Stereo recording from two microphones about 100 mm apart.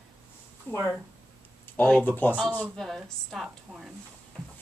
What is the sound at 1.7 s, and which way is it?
Speech, 15° left (ahead or behind).